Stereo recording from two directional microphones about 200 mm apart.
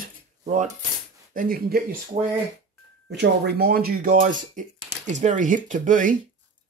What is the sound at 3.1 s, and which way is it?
Speech, 55° right (ahead or behind).